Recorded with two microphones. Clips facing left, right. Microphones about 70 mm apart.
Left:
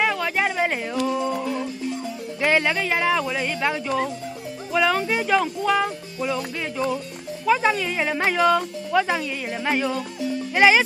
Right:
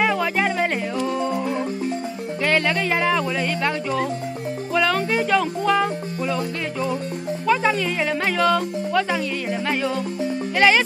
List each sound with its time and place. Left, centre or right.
0.0 s music: centre
1.3 s music: right
2.4 s speech: centre